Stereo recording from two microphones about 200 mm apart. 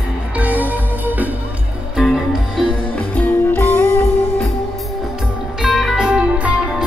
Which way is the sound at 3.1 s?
10° left (ahead or behind).